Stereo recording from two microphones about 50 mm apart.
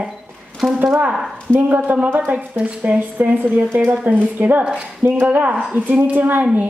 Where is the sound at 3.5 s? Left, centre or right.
Right.